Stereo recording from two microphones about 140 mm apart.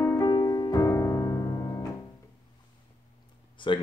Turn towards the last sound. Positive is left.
turn(degrees=35)  # may be behind; listen again after turning